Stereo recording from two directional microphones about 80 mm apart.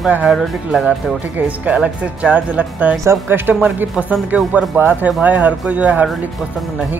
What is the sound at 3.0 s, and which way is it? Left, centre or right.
Speech, right.